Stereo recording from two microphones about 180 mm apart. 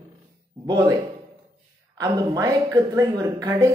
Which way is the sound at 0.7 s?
20° right (ahead or behind).